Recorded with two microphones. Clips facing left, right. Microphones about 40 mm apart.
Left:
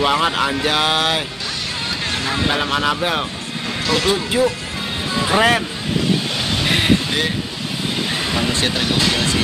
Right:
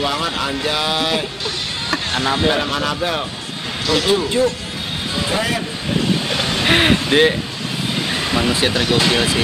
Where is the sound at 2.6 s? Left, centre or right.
Centre.